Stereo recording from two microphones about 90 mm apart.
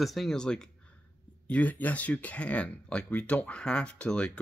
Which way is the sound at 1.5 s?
20° left (ahead or behind).